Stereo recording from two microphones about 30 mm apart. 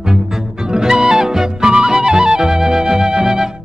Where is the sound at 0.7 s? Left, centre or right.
Right.